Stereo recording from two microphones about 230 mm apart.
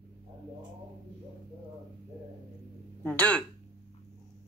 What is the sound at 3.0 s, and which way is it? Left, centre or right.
Speech, centre.